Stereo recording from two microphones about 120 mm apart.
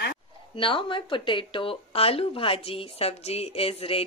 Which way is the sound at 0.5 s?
45° left (ahead or behind).